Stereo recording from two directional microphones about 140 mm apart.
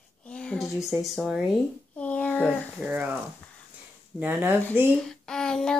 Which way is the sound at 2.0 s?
10° left (ahead or behind).